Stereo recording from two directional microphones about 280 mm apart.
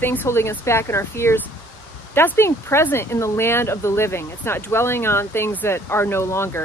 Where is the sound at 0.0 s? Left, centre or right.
Centre.